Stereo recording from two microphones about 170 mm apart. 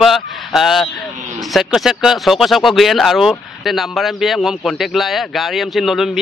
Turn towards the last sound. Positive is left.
turn(degrees=0)  # may be behind; listen again after turning